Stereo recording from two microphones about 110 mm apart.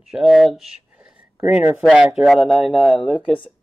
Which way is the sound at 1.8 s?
Centre (ahead or behind).